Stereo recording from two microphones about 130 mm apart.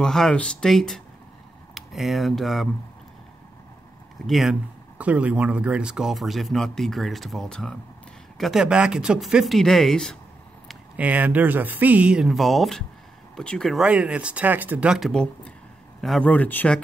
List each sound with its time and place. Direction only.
0.0 s speech: 5° left (ahead or behind)
4.3 s speech: 5° right (ahead or behind)
11.0 s speech: 10° right (ahead or behind)
13.8 s speech: 10° right (ahead or behind)
16.3 s speech: 15° left (ahead or behind)